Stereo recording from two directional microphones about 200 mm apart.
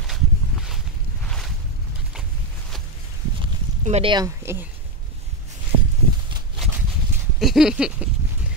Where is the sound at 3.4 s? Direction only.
25° right (ahead or behind).